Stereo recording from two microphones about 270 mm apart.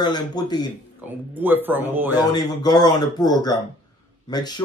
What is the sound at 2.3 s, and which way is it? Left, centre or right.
Speech, centre.